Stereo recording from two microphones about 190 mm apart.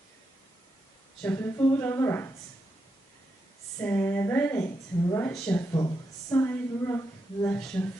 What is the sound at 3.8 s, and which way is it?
Speech, 10° left (ahead or behind).